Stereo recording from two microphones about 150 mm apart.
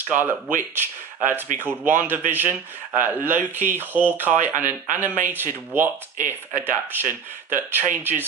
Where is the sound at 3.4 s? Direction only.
10° right (ahead or behind).